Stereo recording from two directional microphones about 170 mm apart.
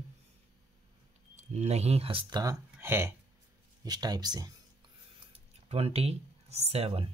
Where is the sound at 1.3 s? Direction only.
40° right (ahead or behind); by 4.5 s 25° right (ahead or behind).